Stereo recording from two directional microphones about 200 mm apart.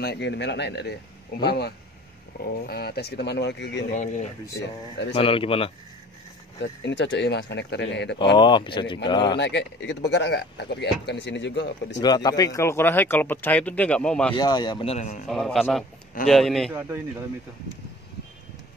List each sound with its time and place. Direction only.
0.0 s speech: 55° left (ahead or behind)
3.9 s speech: 40° left (ahead or behind)
5.1 s speech: 30° left (ahead or behind)
6.6 s speech: 60° left (ahead or behind)
8.4 s speech: 25° left (ahead or behind)
9.4 s speech: 65° left (ahead or behind)
12.0 s speech: 20° left (ahead or behind); by 14.3 s 5° left (ahead or behind)
14.3 s speech: 20° left (ahead or behind)
15.2 s a man's voice: centre (ahead or behind)